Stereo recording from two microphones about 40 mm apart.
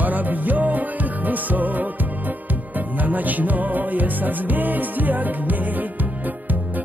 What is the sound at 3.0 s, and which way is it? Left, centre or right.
Music, right.